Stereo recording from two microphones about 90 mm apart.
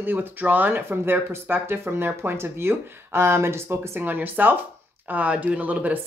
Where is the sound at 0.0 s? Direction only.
20° right (ahead or behind).